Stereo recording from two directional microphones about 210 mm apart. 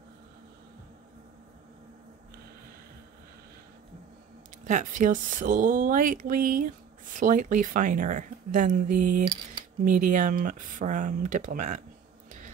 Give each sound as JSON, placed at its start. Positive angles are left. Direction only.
{"t": 4.6, "sound": "speech", "side_deg": -35}